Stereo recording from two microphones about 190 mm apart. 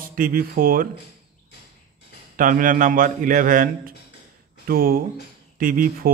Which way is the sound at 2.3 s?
45° right (ahead or behind).